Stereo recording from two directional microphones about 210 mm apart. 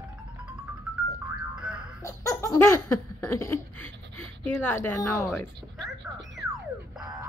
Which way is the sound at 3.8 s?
90° left.